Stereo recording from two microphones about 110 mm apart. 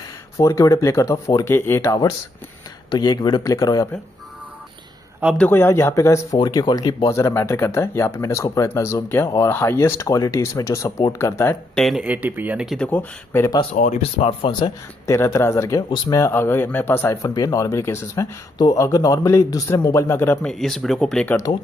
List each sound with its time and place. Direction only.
0.4 s speech: 30° left (ahead or behind)
2.9 s speech: 40° left (ahead or behind)
5.4 s speech: 20° left (ahead or behind)
6.4 s speech: 40° left (ahead or behind)
11.7 s speech: centre (ahead or behind)
12.0 s speech: 15° right (ahead or behind)
12.6 s speech: 5° left (ahead or behind)
12.9 s speech: 20° left (ahead or behind)
13.7 s speech: 80° left; by 14.5 s 60° left (ahead or behind)
15.0 s speech: 25° left (ahead or behind)
16.3 s speech: 20° left (ahead or behind)
20.4 s speech: 5° left (ahead or behind)